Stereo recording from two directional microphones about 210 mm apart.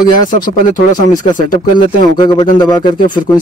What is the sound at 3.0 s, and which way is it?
Speech, 40° left (ahead or behind).